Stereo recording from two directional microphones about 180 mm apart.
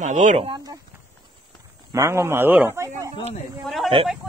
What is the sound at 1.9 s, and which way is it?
A man's voice, 15° right (ahead or behind).